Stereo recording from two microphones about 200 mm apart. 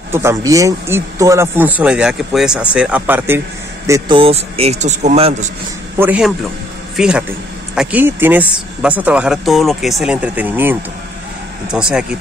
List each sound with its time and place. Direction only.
0.1 s speech: 15° right (ahead or behind)
4.2 s speech: 30° right (ahead or behind)
5.9 s speech: 5° right (ahead or behind)